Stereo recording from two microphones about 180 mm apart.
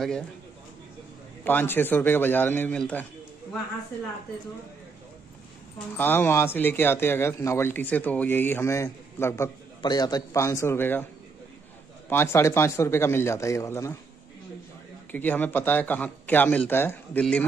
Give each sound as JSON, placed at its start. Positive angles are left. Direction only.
{"t": 1.4, "sound": "a man's voice", "side_deg": 10}
{"t": 5.9, "sound": "a man's voice", "side_deg": 10}
{"t": 12.1, "sound": "a man's voice", "side_deg": 15}
{"t": 15.0, "sound": "a man's voice", "side_deg": 10}